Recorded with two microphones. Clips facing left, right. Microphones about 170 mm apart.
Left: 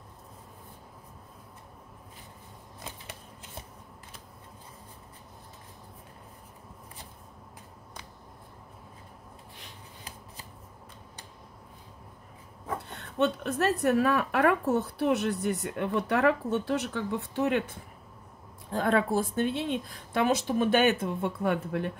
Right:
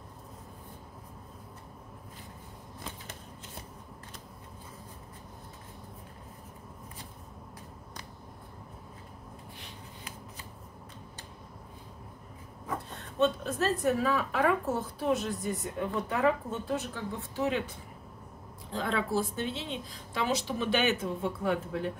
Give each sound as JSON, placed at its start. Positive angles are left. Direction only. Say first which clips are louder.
{"t": 12.9, "sound": "a woman's voice", "louder": "even", "side_deg": 65}